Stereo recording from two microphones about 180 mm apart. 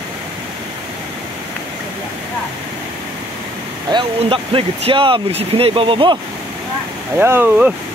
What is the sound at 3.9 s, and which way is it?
Speech, 30° right (ahead or behind).